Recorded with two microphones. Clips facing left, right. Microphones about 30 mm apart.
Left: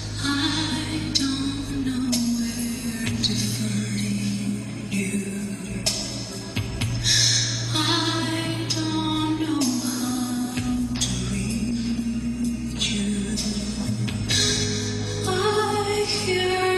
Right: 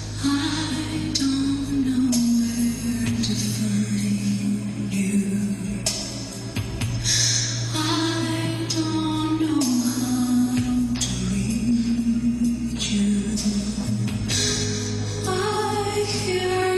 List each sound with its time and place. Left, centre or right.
0.2 s music: left
7.7 s music: left
8.7 s music: centre
9.8 s music: left
10.1 s music: left
15.2 s music: left